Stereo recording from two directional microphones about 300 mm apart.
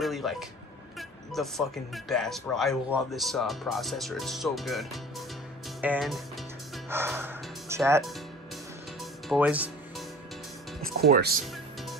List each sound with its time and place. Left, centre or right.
0.0 s speech: centre
0.9 s vehicle: centre
2.0 s speech: centre
9.3 s music: centre
11.0 s speech: right